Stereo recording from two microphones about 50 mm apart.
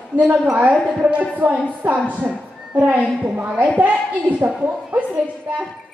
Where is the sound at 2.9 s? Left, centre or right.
Right.